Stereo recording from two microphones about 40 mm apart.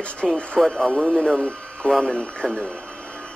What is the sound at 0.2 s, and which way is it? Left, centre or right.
Speech, left.